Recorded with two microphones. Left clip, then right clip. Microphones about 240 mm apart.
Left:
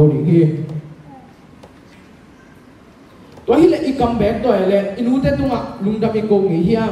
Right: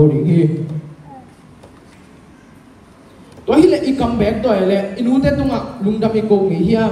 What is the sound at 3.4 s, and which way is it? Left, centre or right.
A woman's voice, right.